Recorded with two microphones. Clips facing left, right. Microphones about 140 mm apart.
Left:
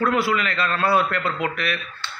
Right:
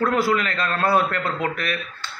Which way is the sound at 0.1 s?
45° right (ahead or behind).